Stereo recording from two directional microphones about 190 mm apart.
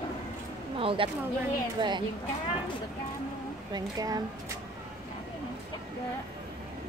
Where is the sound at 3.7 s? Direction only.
20° right (ahead or behind).